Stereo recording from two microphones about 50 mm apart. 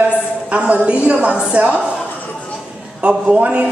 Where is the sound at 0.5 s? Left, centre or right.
Right.